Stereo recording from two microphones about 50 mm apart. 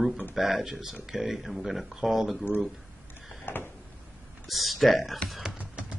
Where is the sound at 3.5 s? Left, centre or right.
Left.